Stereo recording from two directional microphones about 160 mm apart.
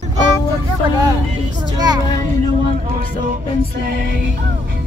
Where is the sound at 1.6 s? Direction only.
25° right (ahead or behind).